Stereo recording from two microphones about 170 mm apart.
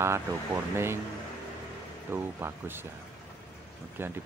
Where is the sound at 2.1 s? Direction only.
10° right (ahead or behind).